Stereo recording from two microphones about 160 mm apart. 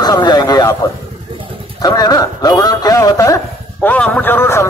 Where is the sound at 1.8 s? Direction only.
25° left (ahead or behind).